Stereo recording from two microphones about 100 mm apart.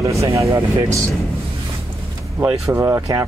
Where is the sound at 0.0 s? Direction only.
30° right (ahead or behind).